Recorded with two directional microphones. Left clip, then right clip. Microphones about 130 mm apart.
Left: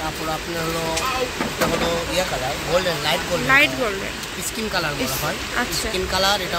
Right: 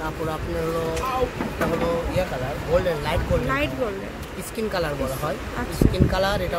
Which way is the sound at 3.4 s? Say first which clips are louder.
Left 9 dB; 10° left (ahead or behind).